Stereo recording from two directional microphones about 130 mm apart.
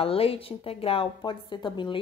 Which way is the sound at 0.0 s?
45° left (ahead or behind).